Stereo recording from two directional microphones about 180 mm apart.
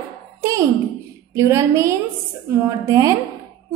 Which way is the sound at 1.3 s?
15° right (ahead or behind).